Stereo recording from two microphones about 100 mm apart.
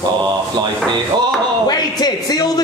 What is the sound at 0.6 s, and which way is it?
Speech, 50° right (ahead or behind).